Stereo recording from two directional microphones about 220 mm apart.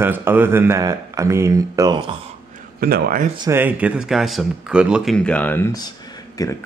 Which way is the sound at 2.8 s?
40° right (ahead or behind).